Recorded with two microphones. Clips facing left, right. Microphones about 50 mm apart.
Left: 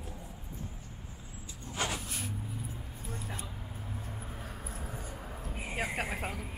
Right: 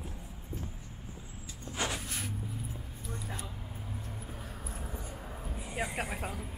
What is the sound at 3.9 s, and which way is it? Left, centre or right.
Vehicle, centre.